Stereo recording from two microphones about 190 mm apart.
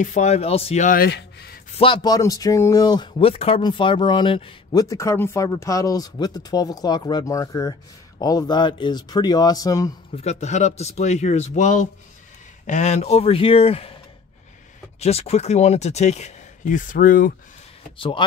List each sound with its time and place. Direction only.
0.0 s speech: 40° left (ahead or behind); by 1.6 s 55° left (ahead or behind)
1.8 s speech: 25° left (ahead or behind)
4.8 s speech: 15° left (ahead or behind)
10.4 s speech: 35° left (ahead or behind)
15.0 s speech: 35° left (ahead or behind)
17.9 s speech: 25° left (ahead or behind)